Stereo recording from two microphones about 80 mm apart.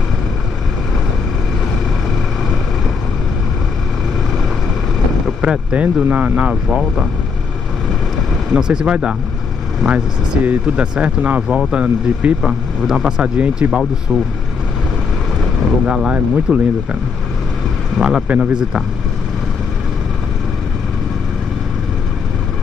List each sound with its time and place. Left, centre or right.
5.4 s speech: centre
8.5 s speech: centre
12.4 s speech: centre
15.8 s speech: centre
17.9 s speech: centre